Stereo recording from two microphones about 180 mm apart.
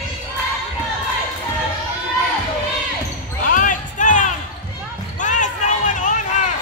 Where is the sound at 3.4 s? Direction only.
45° left (ahead or behind).